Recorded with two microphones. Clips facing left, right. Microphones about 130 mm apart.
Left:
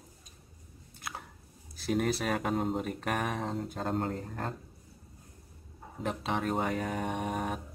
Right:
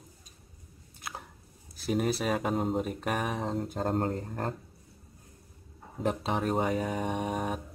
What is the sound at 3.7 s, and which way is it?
Speech, 40° right (ahead or behind).